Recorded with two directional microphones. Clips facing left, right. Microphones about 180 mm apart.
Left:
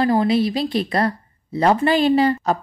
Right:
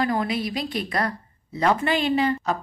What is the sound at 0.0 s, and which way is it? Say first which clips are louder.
Speech: left 7 dB; 30° left (ahead or behind).